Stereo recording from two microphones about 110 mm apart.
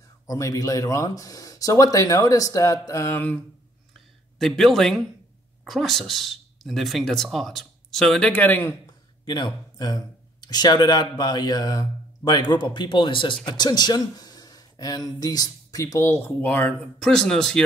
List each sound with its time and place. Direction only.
0.3 s speech: 30° left (ahead or behind)
4.4 s speech: 5° left (ahead or behind); by 8.7 s 20° left (ahead or behind)
9.2 s speech: 40° left (ahead or behind); by 17.6 s 5° left (ahead or behind)